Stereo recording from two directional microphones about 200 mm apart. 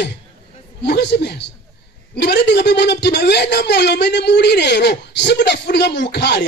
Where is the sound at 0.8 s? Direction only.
55° left (ahead or behind).